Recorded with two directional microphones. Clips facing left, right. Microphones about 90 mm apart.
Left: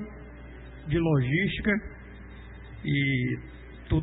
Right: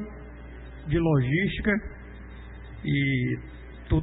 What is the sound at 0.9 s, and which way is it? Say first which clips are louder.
Speech: right 2 dB; 15° right (ahead or behind).